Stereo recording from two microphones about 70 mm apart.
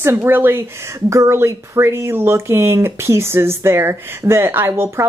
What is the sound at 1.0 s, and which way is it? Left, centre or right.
Speech, right.